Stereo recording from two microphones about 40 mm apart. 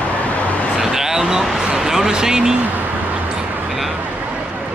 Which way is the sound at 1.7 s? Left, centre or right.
Centre.